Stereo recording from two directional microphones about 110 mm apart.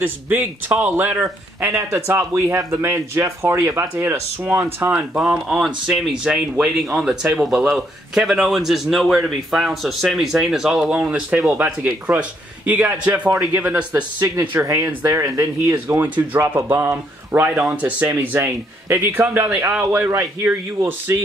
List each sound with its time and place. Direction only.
0.0 s a man's voice: 15° right (ahead or behind)
4.9 s speech: 10° right (ahead or behind)
13.3 s speech: 30° right (ahead or behind)
13.6 s a man's voice: 15° right (ahead or behind)